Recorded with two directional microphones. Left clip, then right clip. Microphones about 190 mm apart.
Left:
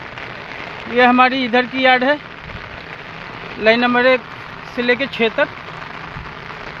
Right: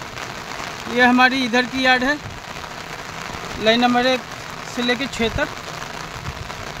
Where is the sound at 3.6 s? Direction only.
10° right (ahead or behind).